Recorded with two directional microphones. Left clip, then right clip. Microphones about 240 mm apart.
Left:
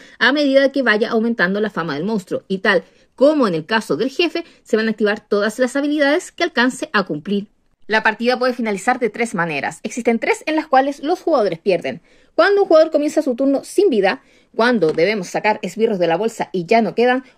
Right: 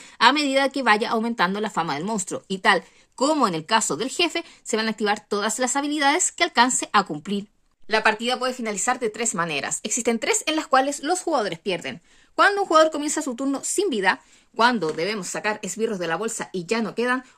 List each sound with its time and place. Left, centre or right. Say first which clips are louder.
0.2 s a woman's voice: left 2 dB; right
0.7 s speech: left 4 dB; centre
7.9 s speech: left 5 dB; left